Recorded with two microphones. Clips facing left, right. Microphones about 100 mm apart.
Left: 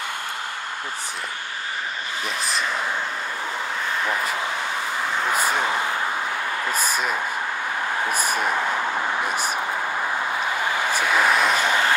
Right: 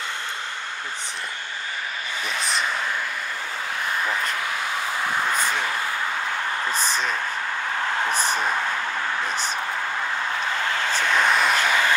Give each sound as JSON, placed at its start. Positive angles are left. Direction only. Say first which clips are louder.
{"t": 4.1, "sound": "speech", "louder": "left 1 dB", "side_deg": 5}
{"t": 6.6, "sound": "speech", "louder": "left 2 dB", "side_deg": 10}
{"t": 10.6, "sound": "speech", "louder": "left 1 dB", "side_deg": 15}
{"t": 11.6, "sound": "a sound", "louder": "left 1 dB", "side_deg": 20}